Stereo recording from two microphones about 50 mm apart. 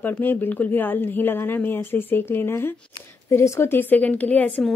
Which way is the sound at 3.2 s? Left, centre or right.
Left.